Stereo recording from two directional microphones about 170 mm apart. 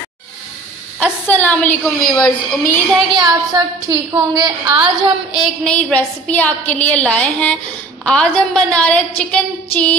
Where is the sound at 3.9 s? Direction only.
25° right (ahead or behind).